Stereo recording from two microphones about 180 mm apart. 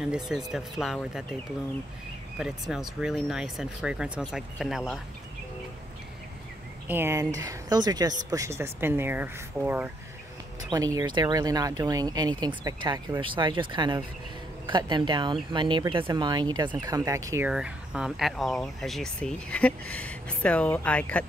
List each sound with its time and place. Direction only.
0.0 s speech: 5° right (ahead or behind)
2.3 s speech: 5° right (ahead or behind)
6.9 s speech: 15° right (ahead or behind)
11.0 s speech: 25° right (ahead or behind)
17.5 s speech: 5° right (ahead or behind)